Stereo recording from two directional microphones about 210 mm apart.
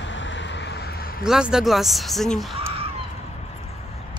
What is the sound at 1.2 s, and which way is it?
Speech, 5° right (ahead or behind).